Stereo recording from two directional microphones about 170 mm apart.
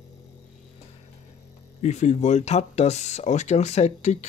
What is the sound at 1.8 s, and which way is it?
Speech, 45° left (ahead or behind).